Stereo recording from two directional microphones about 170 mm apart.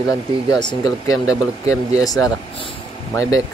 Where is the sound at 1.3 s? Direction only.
5° right (ahead or behind).